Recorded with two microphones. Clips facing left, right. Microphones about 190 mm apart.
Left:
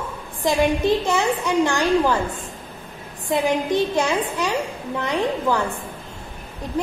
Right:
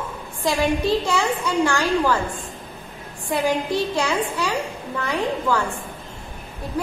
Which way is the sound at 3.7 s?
20° left (ahead or behind).